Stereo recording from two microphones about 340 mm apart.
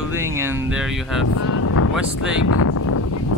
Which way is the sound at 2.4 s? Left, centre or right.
Left.